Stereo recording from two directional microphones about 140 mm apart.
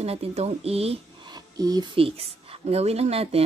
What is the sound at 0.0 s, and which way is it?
Speech, 45° right (ahead or behind).